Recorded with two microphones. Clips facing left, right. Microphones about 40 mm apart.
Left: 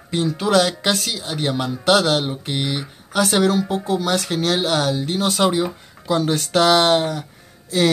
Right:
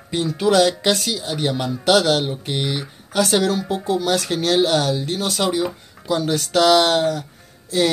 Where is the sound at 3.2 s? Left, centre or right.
Centre.